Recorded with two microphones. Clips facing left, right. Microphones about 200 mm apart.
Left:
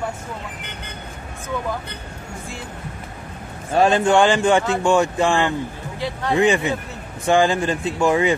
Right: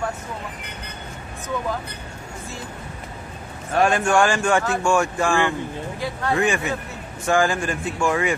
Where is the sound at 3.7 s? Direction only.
25° left (ahead or behind).